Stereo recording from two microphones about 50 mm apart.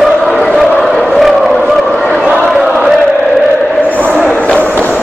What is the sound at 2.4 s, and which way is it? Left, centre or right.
Chant, centre.